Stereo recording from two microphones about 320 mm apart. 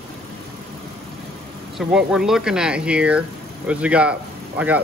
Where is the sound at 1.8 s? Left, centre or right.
Centre.